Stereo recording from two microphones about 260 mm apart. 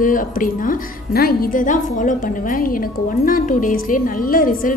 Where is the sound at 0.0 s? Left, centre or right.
Left.